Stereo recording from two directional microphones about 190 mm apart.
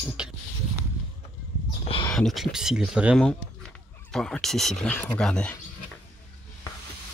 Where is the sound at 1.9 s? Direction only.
25° left (ahead or behind).